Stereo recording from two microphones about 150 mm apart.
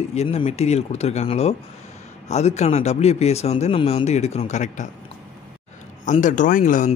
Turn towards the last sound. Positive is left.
turn(degrees=60)  # may be behind; listen again after turning